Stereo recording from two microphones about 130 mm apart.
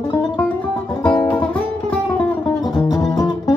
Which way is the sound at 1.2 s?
10° left (ahead or behind).